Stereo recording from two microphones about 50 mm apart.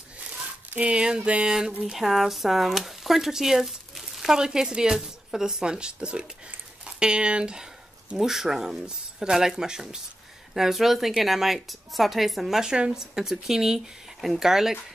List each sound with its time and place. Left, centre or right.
0.7 s speech: right
1.8 s speech: centre
8.2 s a woman's voice: centre